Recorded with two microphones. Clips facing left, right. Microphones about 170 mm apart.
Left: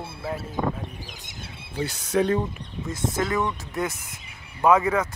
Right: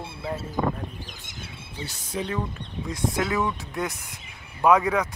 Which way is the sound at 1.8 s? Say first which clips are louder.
Left 9 dB; 65° left (ahead or behind).